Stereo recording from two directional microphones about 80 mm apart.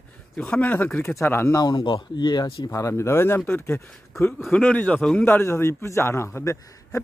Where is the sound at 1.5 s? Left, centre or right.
Left.